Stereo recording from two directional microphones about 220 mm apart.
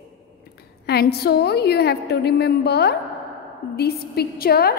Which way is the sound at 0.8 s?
45° left (ahead or behind).